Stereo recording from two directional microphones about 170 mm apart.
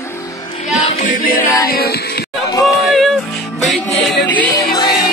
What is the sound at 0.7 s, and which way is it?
Music, 45° left (ahead or behind).